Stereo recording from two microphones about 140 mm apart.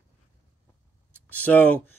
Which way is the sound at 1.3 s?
10° left (ahead or behind).